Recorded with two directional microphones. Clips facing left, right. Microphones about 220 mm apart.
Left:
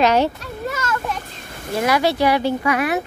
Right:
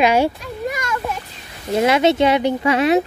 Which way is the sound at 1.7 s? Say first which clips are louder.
Right 4 dB; 20° right (ahead or behind).